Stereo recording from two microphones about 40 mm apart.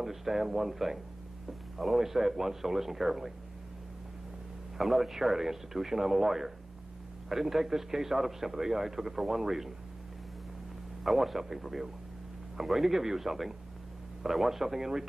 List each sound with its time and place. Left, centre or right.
0.0 s a man's voice: centre
4.7 s a man's voice: centre
11.1 s a man's voice: centre